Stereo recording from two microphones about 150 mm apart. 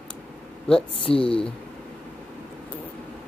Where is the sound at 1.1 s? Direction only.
35° left (ahead or behind).